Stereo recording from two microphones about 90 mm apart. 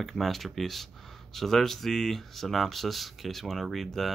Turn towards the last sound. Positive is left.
turn(degrees=0)  # may be behind; listen again after turning